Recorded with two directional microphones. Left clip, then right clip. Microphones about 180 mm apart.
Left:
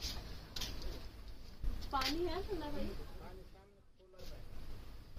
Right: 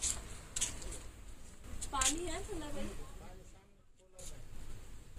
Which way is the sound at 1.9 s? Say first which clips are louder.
Right 1 dB; 20° left (ahead or behind).